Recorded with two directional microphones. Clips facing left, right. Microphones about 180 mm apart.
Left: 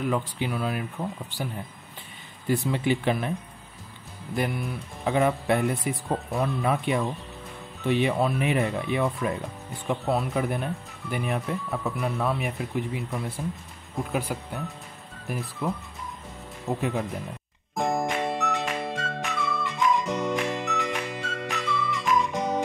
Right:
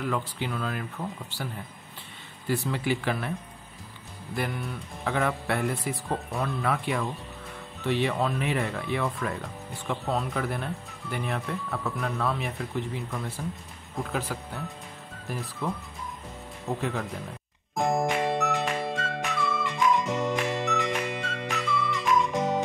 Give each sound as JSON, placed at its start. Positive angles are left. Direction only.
{"t": 0.0, "sound": "speech", "side_deg": 15}
{"t": 4.4, "sound": "speech", "side_deg": 15}
{"t": 15.6, "sound": "speech", "side_deg": 15}
{"t": 17.7, "sound": "music", "side_deg": 0}